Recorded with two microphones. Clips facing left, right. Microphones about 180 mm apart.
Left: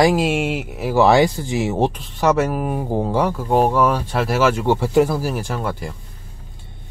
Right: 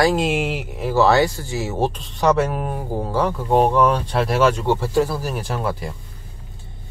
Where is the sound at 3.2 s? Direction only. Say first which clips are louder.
Right 3 dB; 5° left (ahead or behind).